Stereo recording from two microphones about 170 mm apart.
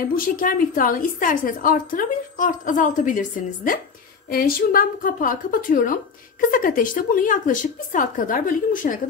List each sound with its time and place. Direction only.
0.1 s a woman's voice: 55° left (ahead or behind)